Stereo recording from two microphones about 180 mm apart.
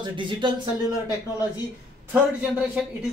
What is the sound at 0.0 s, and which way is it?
Speech, 25° right (ahead or behind).